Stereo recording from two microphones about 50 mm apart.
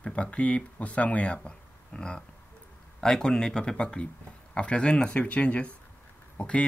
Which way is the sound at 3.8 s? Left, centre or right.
Left.